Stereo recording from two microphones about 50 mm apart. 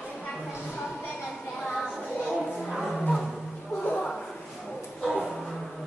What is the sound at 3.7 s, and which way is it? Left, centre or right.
Music, left.